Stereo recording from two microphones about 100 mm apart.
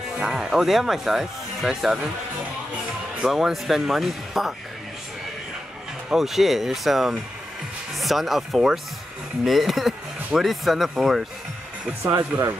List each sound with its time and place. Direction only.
0.2 s speech: 5° right (ahead or behind)
3.2 s speech: 5° right (ahead or behind)
6.0 s speech: 5° right (ahead or behind)
12.0 s speech: 30° right (ahead or behind)